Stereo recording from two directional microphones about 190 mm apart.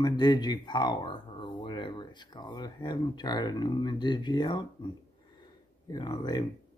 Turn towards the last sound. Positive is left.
turn(degrees=20)  # may be behind; listen again after turning